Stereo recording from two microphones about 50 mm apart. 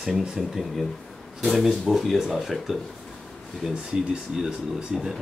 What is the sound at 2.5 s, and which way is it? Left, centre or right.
Speech, centre.